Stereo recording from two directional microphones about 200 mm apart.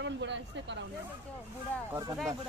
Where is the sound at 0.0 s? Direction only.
65° right (ahead or behind).